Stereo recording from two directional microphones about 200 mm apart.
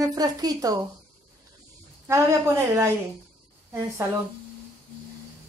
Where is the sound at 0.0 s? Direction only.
20° right (ahead or behind).